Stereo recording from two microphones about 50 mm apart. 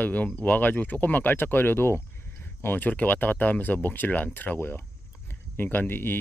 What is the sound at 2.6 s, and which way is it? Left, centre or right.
Speech, left.